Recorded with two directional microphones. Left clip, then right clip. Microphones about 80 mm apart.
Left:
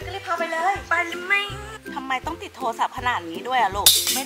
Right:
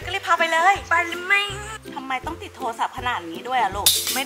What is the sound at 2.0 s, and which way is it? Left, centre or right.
Speech, centre.